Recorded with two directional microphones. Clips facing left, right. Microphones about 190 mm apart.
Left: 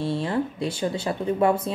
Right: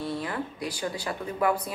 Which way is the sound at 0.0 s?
25° left (ahead or behind).